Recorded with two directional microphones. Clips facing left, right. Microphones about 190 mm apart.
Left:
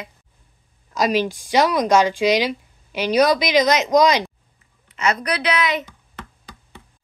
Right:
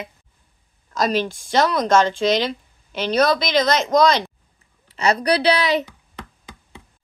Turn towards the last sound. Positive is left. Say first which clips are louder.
# right 3 dB
turn(degrees=-35)  # may be behind; listen again after turning